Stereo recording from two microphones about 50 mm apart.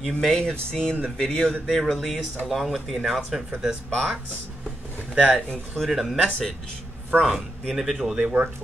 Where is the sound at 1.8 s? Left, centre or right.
Centre.